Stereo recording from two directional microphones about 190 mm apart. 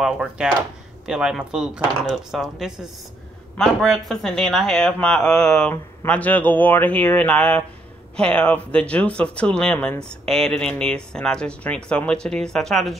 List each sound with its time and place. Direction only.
0.0 s speech: 5° right (ahead or behind)